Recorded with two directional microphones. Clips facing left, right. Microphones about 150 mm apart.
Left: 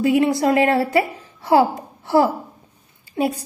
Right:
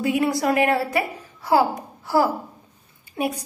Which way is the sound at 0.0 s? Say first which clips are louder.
Left 4 dB; 25° left (ahead or behind).